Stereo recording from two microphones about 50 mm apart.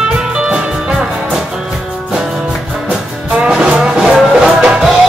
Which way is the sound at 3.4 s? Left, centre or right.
Right.